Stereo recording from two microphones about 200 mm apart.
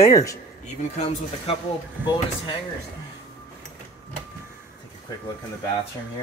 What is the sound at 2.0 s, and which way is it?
Speech, 10° right (ahead or behind).